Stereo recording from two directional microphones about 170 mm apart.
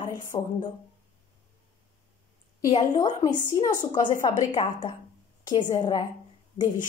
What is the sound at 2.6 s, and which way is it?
A woman's voice, 25° left (ahead or behind).